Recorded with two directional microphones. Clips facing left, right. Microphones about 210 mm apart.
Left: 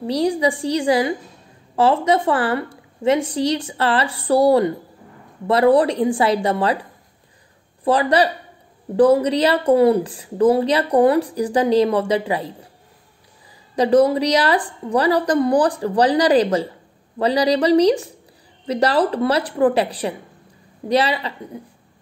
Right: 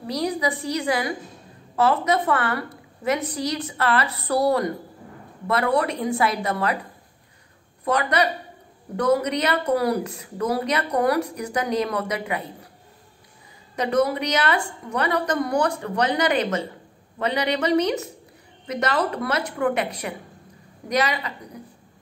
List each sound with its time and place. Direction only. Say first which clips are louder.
0.0 s a woman's voice: left 6 dB; 30° left (ahead or behind)
7.8 s a woman's voice: left 5 dB; 30° left (ahead or behind)
13.7 s a woman's voice: left 7 dB; 30° left (ahead or behind)